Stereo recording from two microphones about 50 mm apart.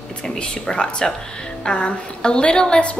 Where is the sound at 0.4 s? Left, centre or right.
Centre.